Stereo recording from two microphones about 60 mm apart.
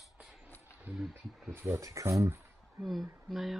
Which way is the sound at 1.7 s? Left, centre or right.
Right.